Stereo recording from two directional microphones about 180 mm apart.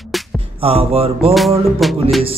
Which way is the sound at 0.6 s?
30° right (ahead or behind).